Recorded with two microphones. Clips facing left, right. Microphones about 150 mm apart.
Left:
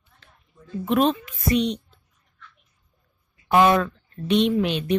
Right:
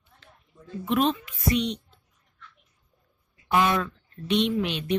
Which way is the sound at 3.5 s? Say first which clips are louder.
Left 6 dB; 45° left (ahead or behind).